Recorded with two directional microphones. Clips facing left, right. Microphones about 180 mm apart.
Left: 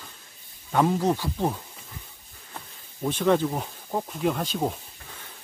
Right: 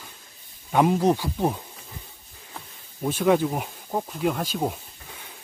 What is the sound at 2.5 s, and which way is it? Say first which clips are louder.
Insect: even; 5° right (ahead or behind).